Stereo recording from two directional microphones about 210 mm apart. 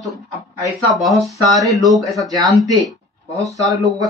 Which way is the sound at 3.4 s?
15° right (ahead or behind).